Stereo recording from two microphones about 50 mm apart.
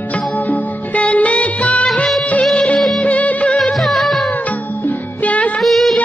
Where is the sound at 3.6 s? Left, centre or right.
Centre.